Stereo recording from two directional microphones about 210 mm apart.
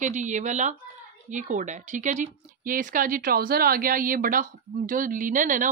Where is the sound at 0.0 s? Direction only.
35° right (ahead or behind).